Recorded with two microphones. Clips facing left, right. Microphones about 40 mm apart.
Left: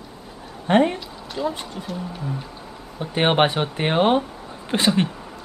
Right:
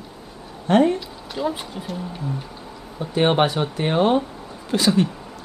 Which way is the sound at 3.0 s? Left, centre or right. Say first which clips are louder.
Even; left.